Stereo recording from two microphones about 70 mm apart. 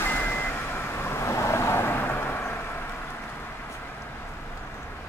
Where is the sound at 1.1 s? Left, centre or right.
Left.